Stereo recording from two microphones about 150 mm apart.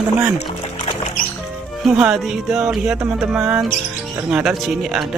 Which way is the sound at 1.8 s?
5° right (ahead or behind).